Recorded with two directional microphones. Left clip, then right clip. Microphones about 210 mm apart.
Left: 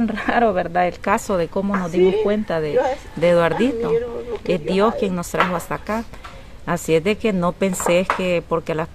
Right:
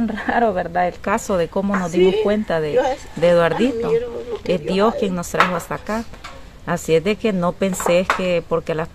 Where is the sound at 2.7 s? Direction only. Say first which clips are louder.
Even; 25° right (ahead or behind).